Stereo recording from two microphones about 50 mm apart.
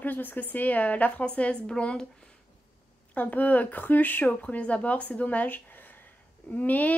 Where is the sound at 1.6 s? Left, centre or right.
Centre.